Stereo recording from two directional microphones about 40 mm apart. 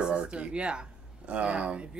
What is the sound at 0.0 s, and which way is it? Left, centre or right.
Speech, right.